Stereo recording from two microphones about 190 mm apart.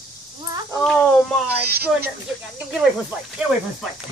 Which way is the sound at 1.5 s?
55° right (ahead or behind).